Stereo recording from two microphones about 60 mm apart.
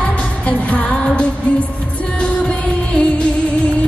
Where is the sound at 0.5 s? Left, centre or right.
Left.